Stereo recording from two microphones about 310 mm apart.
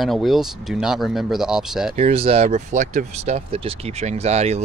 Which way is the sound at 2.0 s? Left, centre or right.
Centre.